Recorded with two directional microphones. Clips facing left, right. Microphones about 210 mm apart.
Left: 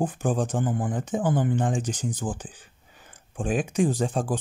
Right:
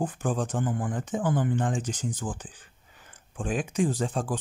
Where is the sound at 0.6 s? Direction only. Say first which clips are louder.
Left 2 dB; 30° left (ahead or behind).